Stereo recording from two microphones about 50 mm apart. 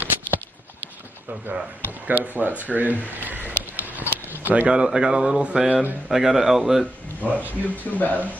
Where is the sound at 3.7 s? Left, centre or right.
Right.